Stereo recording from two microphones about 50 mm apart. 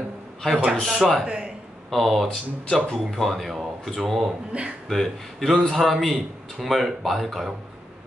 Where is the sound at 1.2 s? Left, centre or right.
Centre.